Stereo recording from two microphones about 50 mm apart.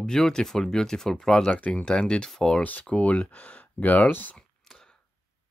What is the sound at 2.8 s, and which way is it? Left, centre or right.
Speech, left.